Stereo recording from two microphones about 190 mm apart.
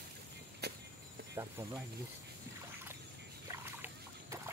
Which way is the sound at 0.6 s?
60° right (ahead or behind).